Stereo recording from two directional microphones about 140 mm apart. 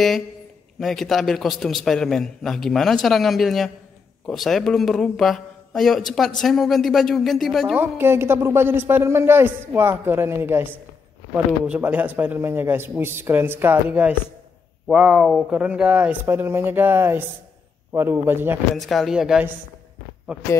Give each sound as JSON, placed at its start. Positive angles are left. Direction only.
{"t": 0.7, "sound": "a man's voice", "side_deg": 0}
{"t": 7.7, "sound": "a woman's voice", "side_deg": -15}
{"t": 18.8, "sound": "a man's voice", "side_deg": 0}